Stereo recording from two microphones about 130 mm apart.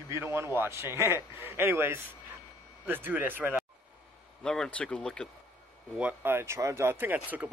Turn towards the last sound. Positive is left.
turn(degrees=-15)  # may be behind; listen again after turning